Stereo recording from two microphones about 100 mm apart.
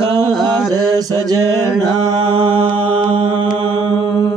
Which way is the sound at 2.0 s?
60° right (ahead or behind).